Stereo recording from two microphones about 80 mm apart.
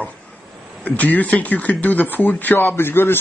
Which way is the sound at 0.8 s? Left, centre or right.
Centre.